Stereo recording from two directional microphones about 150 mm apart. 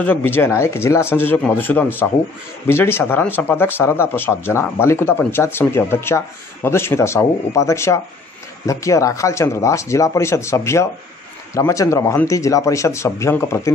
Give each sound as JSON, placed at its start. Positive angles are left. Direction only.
{"t": 0.0, "sound": "speech", "side_deg": 10}